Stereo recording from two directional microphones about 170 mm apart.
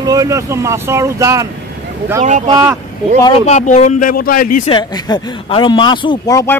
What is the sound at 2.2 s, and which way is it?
Speech, 45° right (ahead or behind).